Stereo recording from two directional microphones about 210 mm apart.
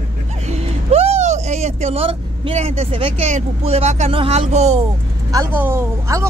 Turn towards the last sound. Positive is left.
turn(degrees=-15)  # may be behind; listen again after turning